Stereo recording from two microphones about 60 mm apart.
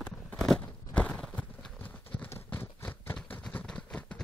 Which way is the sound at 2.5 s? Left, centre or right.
Left.